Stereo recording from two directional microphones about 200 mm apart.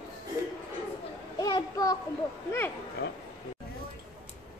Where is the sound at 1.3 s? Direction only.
20° left (ahead or behind).